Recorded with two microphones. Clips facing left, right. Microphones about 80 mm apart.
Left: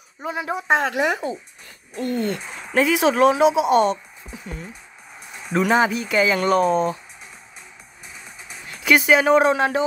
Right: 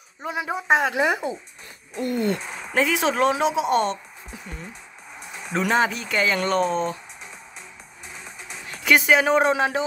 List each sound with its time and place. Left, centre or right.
0.2 s speech: centre
0.9 s a sound: centre
2.5 s speech: centre
8.5 s speech: centre